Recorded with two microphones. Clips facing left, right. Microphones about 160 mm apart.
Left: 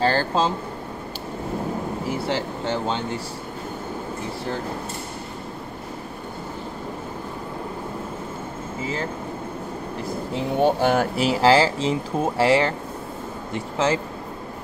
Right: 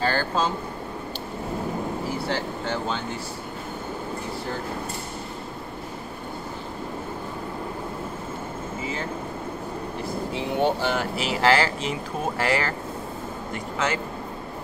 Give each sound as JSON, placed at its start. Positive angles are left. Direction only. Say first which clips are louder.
{"t": 0.0, "sound": "speech", "louder": "left 3 dB", "side_deg": 30}
{"t": 2.2, "sound": "speech", "louder": "left 2 dB", "side_deg": 30}
{"t": 10.3, "sound": "speech", "louder": "left 4 dB", "side_deg": 50}